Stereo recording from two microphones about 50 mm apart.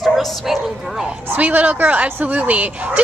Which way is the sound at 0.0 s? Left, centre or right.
Centre.